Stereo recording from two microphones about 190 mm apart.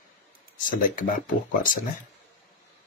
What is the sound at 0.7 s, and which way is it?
Speech, 45° left (ahead or behind).